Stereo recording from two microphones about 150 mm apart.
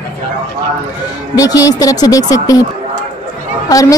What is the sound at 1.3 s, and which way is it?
Speech, 25° left (ahead or behind).